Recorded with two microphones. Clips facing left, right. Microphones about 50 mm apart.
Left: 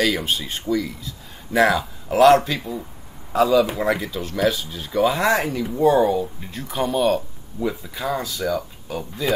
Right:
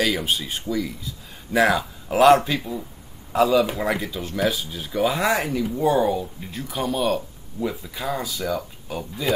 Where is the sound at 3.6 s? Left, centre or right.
Centre.